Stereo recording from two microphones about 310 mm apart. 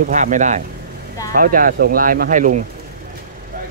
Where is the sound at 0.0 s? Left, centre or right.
Right.